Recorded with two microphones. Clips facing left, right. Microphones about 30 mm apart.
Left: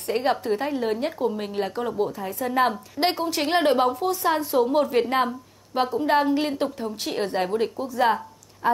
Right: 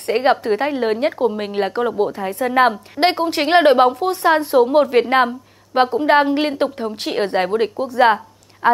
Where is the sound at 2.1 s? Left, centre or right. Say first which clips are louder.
Right 7 dB; right.